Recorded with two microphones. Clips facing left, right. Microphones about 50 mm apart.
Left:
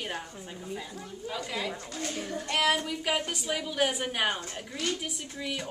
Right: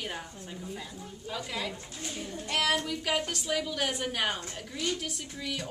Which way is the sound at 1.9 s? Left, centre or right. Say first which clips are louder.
Left 5 dB; left.